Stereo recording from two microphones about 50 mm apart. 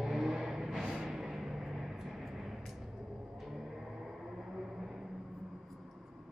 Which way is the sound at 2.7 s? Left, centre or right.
Centre.